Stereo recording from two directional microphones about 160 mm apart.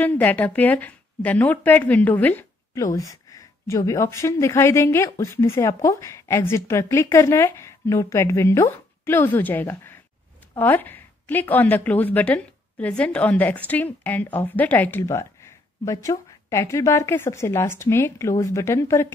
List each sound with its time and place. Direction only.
0.0 s a woman's voice: 10° left (ahead or behind)